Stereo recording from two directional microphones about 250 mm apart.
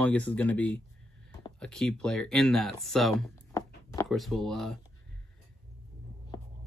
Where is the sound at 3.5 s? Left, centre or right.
Centre.